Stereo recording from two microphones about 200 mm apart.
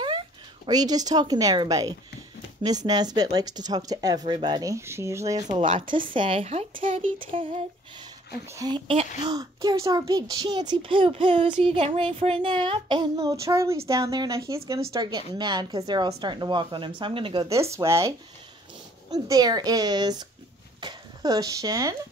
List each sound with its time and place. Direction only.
0.7 s a child's voice: 20° right (ahead or behind)